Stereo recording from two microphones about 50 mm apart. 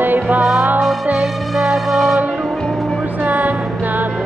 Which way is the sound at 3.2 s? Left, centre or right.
Right.